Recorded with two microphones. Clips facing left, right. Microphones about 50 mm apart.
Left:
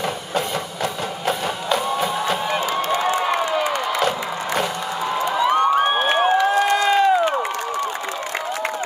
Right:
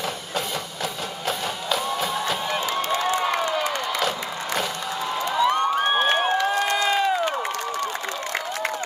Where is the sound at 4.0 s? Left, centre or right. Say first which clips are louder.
Left 4 dB; centre.